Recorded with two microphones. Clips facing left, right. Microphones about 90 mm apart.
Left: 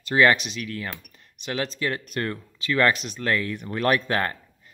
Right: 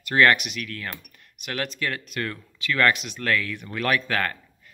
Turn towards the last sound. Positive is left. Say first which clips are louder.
# left 1 dB
turn(degrees=25)  # may be behind; listen again after turning